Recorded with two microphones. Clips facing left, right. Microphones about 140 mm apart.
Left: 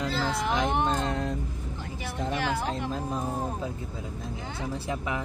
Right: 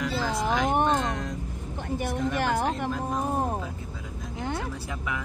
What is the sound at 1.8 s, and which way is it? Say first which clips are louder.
Vehicle: right 8 dB; 55° right (ahead or behind).